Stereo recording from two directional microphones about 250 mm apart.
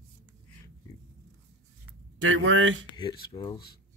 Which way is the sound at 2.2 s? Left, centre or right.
Right.